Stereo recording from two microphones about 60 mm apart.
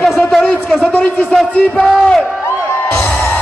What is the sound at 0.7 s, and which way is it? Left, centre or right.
Speech, left.